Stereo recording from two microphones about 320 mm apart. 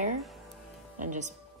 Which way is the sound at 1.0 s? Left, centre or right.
Right.